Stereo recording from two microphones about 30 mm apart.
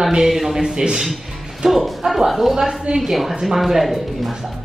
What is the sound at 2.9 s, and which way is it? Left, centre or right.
Speech, right.